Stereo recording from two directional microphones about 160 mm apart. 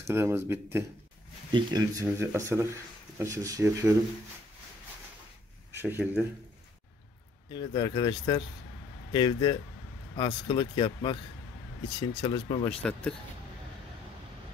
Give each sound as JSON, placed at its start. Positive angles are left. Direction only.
{"t": 0.0, "sound": "speech", "side_deg": -15}
{"t": 5.7, "sound": "speech", "side_deg": -15}
{"t": 7.4, "sound": "speech", "side_deg": 30}
{"t": 12.2, "sound": "speech", "side_deg": 35}
{"t": 12.6, "sound": "speech", "side_deg": 5}